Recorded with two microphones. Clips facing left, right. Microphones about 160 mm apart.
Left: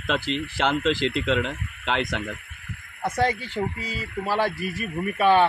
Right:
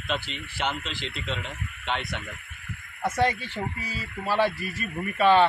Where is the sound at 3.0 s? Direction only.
10° left (ahead or behind).